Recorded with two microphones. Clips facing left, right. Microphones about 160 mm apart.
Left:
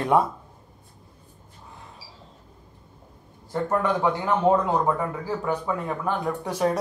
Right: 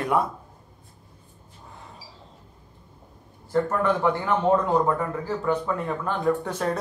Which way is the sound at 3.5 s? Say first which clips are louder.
Right 1 dB; 15° left (ahead or behind).